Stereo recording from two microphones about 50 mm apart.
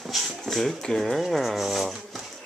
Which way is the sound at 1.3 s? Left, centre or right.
Centre.